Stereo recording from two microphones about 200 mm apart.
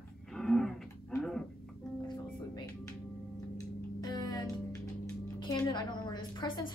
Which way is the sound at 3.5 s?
20° left (ahead or behind).